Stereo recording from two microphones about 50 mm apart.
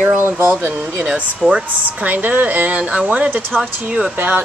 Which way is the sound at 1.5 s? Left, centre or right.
Right.